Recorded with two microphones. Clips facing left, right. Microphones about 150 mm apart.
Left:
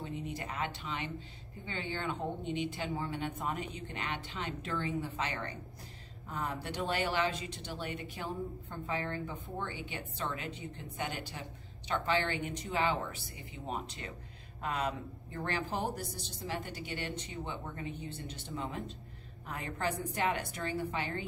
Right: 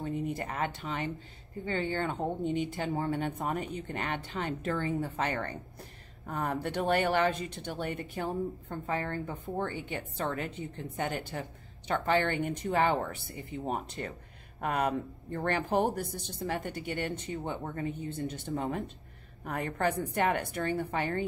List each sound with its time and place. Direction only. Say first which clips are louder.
0.0 s a woman's voice: right 6 dB; 50° right (ahead or behind)